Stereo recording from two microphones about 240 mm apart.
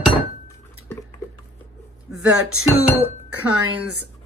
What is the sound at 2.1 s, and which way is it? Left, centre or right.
Speech, left.